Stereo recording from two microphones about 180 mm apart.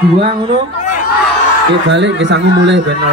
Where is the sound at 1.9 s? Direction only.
80° right.